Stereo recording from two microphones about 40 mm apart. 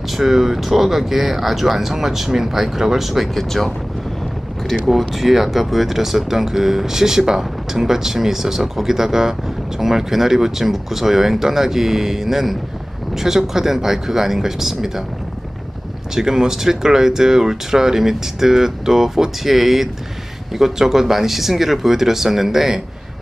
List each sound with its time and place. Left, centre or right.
0.1 s speech: centre
3.3 s speech: centre
4.8 s speech: centre
16.2 s speech: centre